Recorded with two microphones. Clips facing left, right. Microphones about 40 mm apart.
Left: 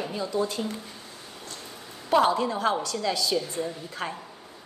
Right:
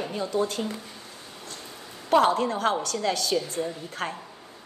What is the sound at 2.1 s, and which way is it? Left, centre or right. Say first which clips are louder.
A woman's voice: right 1 dB; right.